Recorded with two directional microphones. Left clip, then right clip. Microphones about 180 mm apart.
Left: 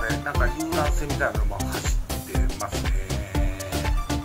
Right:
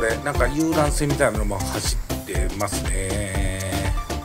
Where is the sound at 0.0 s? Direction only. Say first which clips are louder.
Right 5 dB; 40° right (ahead or behind).